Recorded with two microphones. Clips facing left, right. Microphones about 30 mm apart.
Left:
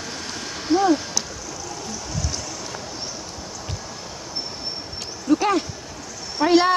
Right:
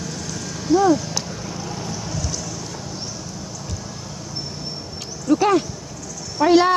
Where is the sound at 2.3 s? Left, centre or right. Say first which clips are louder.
Right 1 dB; left.